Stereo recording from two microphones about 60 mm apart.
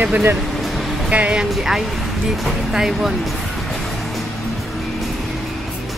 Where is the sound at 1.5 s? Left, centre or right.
Centre.